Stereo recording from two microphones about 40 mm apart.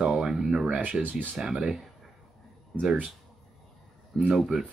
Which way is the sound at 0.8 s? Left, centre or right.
Right.